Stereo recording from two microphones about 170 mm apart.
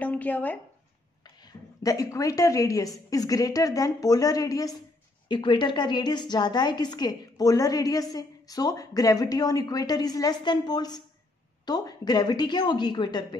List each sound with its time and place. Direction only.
0.0 s speech: 10° left (ahead or behind)
1.2 s a woman's voice: 20° left (ahead or behind)